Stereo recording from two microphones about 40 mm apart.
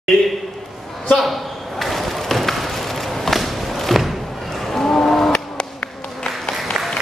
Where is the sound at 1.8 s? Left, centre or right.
Centre.